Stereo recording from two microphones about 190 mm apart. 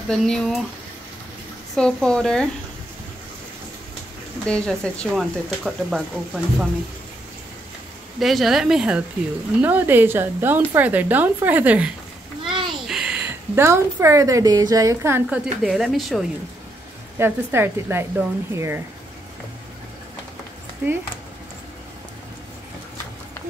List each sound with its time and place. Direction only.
0.1 s speech: 5° left (ahead or behind)
1.8 s speech: 5° left (ahead or behind)
4.5 s speech: 5° left (ahead or behind)
8.2 s a woman's voice: centre (ahead or behind)
15.2 s speech: 5° right (ahead or behind)
17.2 s a woman's voice: 10° right (ahead or behind)
20.8 s a woman's voice: 10° right (ahead or behind)